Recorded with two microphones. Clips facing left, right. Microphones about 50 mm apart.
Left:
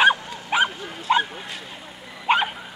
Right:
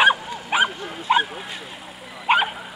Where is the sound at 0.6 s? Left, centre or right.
Centre.